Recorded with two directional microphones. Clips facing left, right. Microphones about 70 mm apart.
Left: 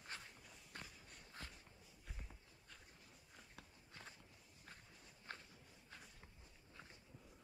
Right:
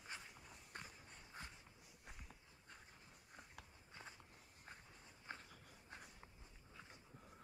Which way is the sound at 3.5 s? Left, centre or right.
Centre.